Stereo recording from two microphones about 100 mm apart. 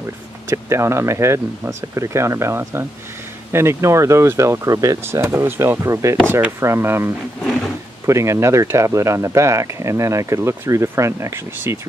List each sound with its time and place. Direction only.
0.5 s speech: 30° right (ahead or behind)
7.4 s wild animals: 5° right (ahead or behind)
8.1 s speech: 30° right (ahead or behind)